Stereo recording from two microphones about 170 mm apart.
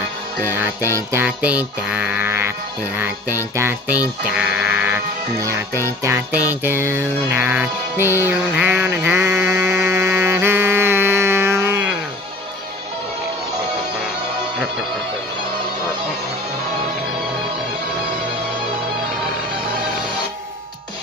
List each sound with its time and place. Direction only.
0.8 s speech: 15° right (ahead or behind)
3.5 s speech: 10° right (ahead or behind)
8.0 s music: 15° left (ahead or behind)
8.3 s mantra: 10° right (ahead or behind)